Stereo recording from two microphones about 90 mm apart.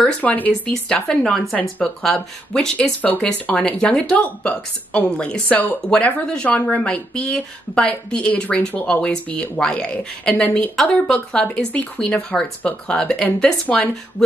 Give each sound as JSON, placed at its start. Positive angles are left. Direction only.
{"t": 0.0, "sound": "speech", "side_deg": 15}